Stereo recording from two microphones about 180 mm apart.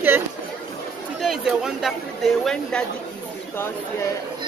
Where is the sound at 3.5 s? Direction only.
15° left (ahead or behind).